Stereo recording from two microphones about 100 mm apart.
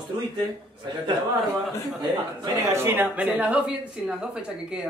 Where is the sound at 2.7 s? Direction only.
20° right (ahead or behind).